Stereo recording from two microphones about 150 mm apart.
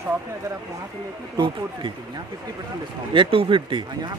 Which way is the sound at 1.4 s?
30° right (ahead or behind).